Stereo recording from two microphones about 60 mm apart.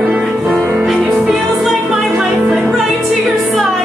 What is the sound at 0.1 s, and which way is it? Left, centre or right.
Music, centre.